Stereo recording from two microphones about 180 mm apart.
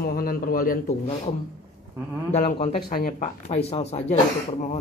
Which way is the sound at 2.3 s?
40° left (ahead or behind).